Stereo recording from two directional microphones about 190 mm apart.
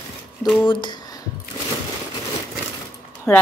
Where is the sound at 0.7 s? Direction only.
25° left (ahead or behind).